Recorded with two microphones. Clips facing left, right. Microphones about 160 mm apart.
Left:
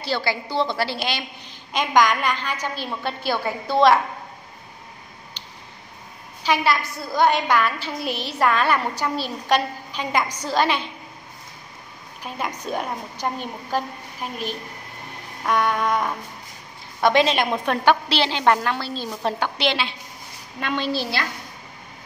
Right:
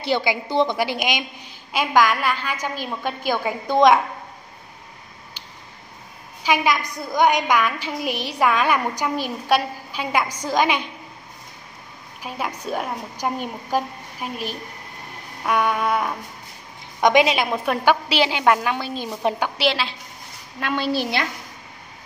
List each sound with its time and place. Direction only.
0.0 s a woman's voice: 20° right (ahead or behind)
6.4 s a woman's voice: 10° right (ahead or behind)
12.2 s a woman's voice: 5° right (ahead or behind)